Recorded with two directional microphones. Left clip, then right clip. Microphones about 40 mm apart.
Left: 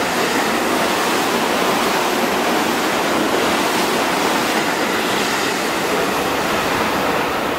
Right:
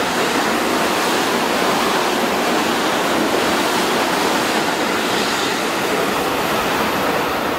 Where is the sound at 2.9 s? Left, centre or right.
Centre.